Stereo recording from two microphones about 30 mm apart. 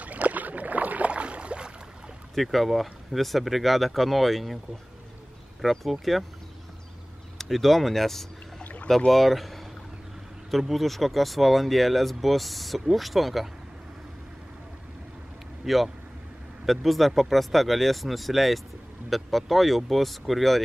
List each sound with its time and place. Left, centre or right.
0.0 s boat: right
2.3 s speech: centre
5.6 s speech: centre
7.3 s speech: centre
15.6 s speech: centre